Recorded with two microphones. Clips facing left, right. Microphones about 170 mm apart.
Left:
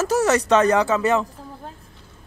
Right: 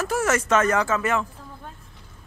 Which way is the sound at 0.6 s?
20° left (ahead or behind).